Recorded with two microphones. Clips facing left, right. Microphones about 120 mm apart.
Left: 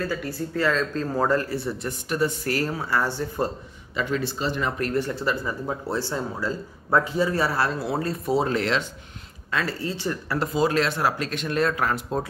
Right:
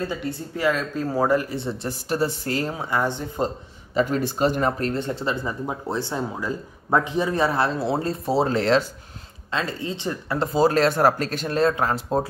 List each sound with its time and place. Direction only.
0.0 s speech: 20° right (ahead or behind)
3.9 s speech: 45° right (ahead or behind)
4.8 s speech: 25° right (ahead or behind)
9.5 s speech: 25° right (ahead or behind)